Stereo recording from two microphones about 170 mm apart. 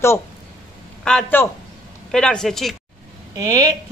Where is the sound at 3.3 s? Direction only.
20° right (ahead or behind).